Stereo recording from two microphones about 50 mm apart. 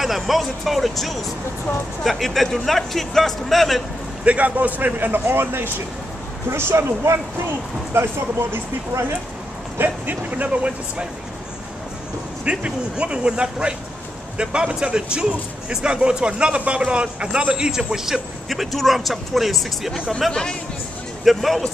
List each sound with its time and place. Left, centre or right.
0.0 s speech: centre
4.2 s speech: right
9.8 s speech: right
12.4 s a man's voice: right
17.9 s speech: centre
20.2 s speech: centre
21.2 s speech: centre